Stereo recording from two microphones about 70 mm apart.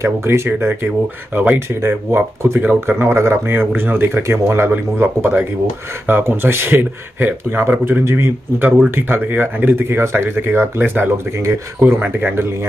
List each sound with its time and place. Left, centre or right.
0.0 s speech: right
1.8 s speech: right
8.0 s speech: right
8.5 s speech: right
11.3 s speech: right
12.0 s speech: right